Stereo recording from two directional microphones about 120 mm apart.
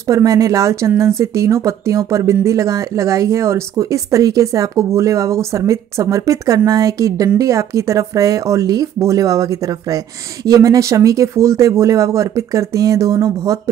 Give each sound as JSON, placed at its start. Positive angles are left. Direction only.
{"t": 0.0, "sound": "speech", "side_deg": -30}